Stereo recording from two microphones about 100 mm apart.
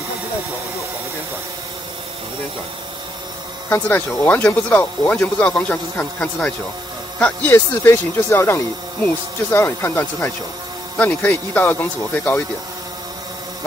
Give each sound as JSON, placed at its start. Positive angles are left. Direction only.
{"t": 3.7, "sound": "speech", "side_deg": 20}